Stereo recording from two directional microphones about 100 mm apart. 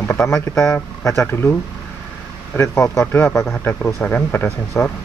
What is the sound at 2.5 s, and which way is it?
Speech, 25° left (ahead or behind).